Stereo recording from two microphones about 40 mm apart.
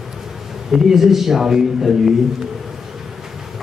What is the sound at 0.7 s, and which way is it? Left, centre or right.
Speech, centre.